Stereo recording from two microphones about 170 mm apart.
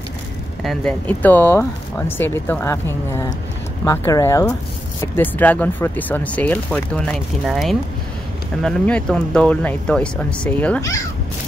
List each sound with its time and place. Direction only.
0.7 s speech: 5° left (ahead or behind)